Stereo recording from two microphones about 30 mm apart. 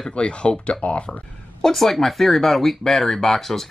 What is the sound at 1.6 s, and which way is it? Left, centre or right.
Speech, centre.